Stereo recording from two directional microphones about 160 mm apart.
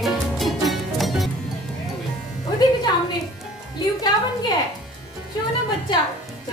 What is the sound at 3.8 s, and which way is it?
Music, 25° left (ahead or behind).